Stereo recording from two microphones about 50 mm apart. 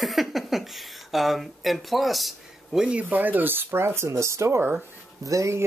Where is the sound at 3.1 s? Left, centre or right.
Right.